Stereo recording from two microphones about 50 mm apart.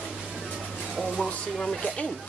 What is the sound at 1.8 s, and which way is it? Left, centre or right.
Speech, left.